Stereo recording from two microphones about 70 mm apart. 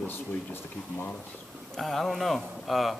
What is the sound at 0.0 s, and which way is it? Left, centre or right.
Speech, left.